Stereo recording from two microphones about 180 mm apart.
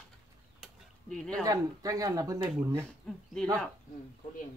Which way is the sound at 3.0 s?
Centre (ahead or behind).